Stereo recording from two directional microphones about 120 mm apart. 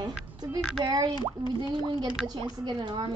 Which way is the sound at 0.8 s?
40° right (ahead or behind).